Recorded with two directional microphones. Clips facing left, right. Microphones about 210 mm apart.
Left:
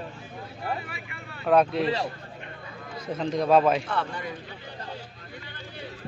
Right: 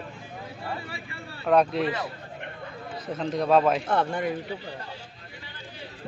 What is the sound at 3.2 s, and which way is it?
Speech, centre (ahead or behind).